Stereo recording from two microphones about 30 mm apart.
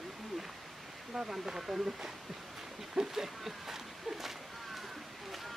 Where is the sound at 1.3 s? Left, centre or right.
Centre.